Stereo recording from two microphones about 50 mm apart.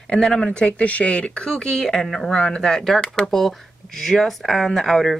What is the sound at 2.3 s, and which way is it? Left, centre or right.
A woman's voice, centre.